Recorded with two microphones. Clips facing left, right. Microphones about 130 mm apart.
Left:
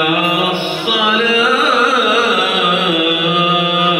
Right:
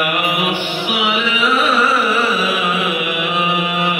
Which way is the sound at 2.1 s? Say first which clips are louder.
Left 3 dB; 80° left.